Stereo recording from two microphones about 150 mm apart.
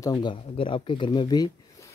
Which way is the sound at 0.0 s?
30° left (ahead or behind).